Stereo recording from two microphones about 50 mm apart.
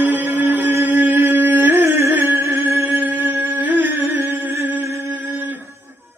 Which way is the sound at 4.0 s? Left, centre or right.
Right.